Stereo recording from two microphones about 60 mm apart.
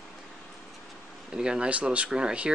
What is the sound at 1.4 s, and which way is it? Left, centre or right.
Speech, centre.